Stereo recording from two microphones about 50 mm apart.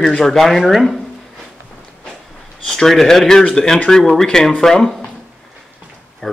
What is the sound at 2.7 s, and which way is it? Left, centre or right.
Speech, centre.